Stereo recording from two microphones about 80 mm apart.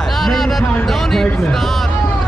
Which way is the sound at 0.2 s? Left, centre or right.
Centre.